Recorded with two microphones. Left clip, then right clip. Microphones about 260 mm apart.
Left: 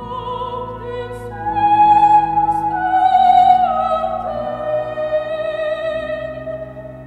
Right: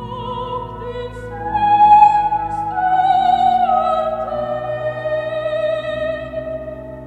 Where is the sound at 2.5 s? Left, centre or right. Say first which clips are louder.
Even; left.